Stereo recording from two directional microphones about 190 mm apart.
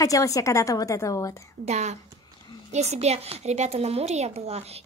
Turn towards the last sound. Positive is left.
turn(degrees=-35)  # may be behind; listen again after turning